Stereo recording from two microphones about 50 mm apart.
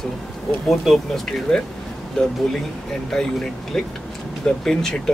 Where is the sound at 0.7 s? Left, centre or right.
Centre.